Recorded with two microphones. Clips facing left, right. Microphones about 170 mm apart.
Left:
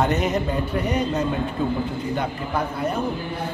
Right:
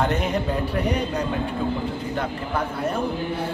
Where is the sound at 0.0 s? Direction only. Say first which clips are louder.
Left 2 dB; 10° left (ahead or behind).